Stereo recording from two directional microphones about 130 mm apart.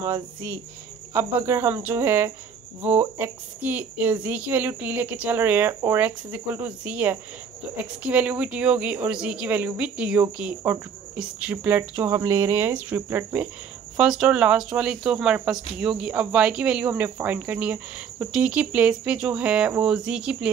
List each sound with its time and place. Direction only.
0.0 s speech: 25° right (ahead or behind); by 20.4 s 10° right (ahead or behind)